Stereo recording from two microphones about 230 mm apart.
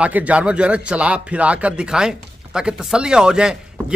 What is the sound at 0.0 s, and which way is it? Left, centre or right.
A man's voice, centre.